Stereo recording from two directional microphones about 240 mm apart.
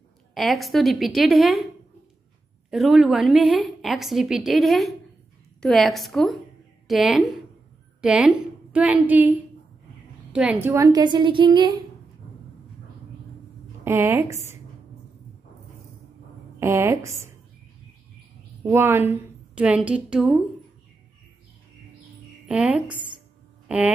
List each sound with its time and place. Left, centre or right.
0.3 s a woman's voice: centre
2.7 s a woman's voice: centre
13.8 s a woman's voice: centre
16.5 s a woman's voice: centre
18.6 s a woman's voice: centre
22.5 s a woman's voice: centre